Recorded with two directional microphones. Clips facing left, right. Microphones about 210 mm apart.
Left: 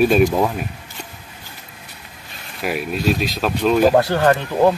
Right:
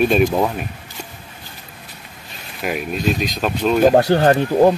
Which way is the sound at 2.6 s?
Centre (ahead or behind).